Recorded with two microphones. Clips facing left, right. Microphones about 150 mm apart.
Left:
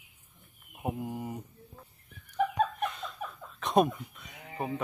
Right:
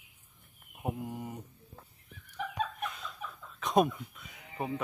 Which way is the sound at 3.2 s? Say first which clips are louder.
Left 4 dB; 50° left (ahead or behind).